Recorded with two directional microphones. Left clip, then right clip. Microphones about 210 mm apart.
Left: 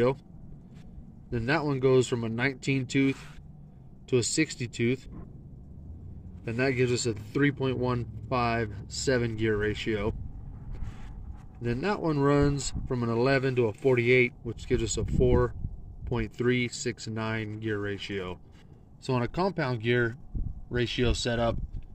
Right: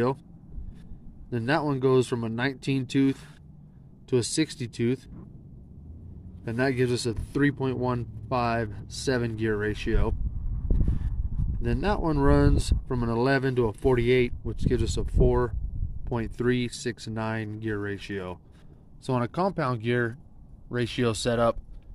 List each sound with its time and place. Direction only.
1.3 s speech: 15° right (ahead or behind)
6.4 s speech: 15° right (ahead or behind)
11.6 s speech: 15° right (ahead or behind)